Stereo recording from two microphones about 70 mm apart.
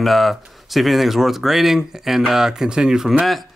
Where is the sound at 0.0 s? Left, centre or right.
Centre.